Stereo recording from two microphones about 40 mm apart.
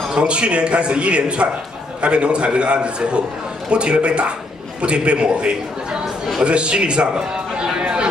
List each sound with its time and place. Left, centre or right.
0.1 s speech: right